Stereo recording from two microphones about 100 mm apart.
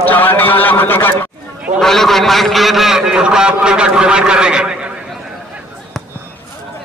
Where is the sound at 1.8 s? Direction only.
5° left (ahead or behind).